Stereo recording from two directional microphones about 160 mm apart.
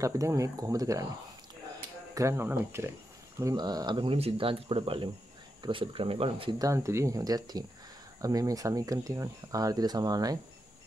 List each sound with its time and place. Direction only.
0.0 s speech: 20° right (ahead or behind)
2.1 s speech: 15° right (ahead or behind); by 6.5 s 35° right (ahead or behind)
6.6 s speech: 20° right (ahead or behind)